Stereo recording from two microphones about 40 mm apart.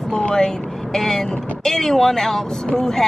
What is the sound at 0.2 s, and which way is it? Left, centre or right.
Speech, centre.